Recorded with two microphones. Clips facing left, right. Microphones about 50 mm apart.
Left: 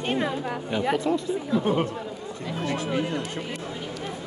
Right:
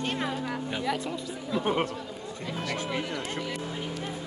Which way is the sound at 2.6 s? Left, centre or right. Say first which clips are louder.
Left 4 dB; left.